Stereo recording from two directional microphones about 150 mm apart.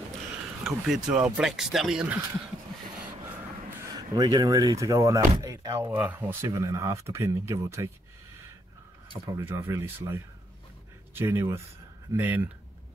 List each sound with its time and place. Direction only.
0.7 s speech: 5° right (ahead or behind)
3.9 s speech: 25° right (ahead or behind)
5.9 s speech: 10° right (ahead or behind)
9.2 s speech: 15° right (ahead or behind)